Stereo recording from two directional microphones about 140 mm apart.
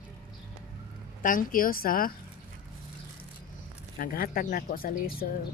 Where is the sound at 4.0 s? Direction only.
90° left.